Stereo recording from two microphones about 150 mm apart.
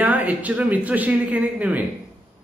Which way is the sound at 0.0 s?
10° right (ahead or behind).